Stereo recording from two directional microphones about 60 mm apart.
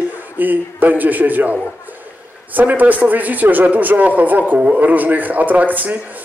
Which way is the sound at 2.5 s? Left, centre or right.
Right.